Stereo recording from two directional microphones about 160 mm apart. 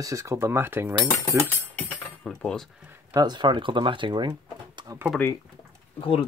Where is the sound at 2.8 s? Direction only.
15° right (ahead or behind).